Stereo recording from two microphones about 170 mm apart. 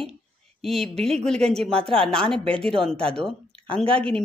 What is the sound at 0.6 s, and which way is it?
Speech, centre (ahead or behind).